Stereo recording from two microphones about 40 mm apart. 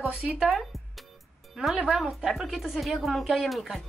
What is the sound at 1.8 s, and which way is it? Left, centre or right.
Speech, centre.